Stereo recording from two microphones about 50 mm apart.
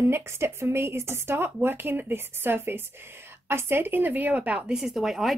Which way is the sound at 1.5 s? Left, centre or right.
Right.